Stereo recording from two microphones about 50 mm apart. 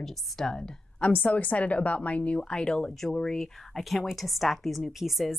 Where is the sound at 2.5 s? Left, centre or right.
Centre.